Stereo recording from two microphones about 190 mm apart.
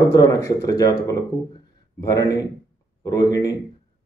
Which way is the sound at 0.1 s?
20° left (ahead or behind).